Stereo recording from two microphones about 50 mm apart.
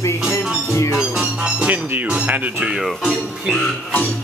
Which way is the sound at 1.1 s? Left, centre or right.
Right.